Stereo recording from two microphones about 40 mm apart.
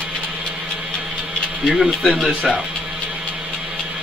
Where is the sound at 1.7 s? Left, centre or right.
Centre.